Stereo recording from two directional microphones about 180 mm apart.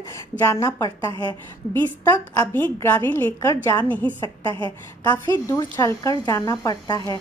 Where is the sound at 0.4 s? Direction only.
15° left (ahead or behind).